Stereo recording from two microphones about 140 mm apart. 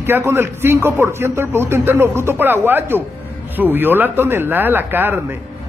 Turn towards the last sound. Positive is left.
turn(degrees=-15)  # may be behind; listen again after turning